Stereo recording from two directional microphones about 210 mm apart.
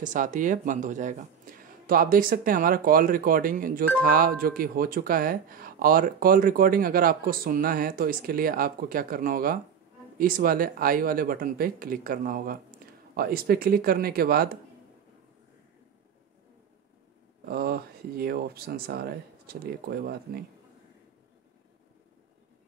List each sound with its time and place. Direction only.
0.0 s speech: 35° right (ahead or behind)
17.5 s speech: 45° right (ahead or behind)